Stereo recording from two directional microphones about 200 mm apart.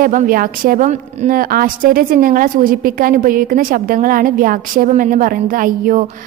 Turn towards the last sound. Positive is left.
turn(degrees=-45)  # may be behind; listen again after turning